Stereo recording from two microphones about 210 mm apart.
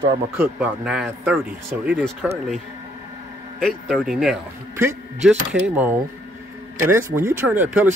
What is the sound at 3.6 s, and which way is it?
Speech, 5° left (ahead or behind).